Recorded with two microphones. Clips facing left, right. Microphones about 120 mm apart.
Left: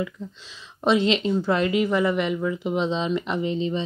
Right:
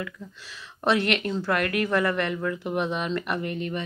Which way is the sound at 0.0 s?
20° left (ahead or behind).